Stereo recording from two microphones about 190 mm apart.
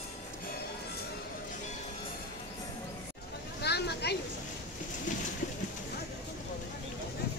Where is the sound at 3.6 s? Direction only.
60° left (ahead or behind).